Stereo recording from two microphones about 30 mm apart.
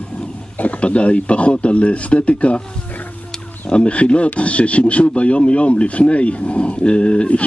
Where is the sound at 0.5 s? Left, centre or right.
Left.